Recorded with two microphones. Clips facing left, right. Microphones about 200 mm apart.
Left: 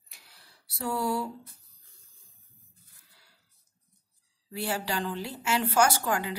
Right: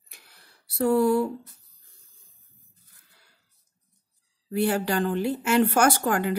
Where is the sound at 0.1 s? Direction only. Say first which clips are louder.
Right 3 dB; 55° right (ahead or behind).